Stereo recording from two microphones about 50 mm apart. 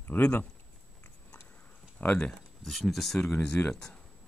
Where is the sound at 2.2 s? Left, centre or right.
Centre.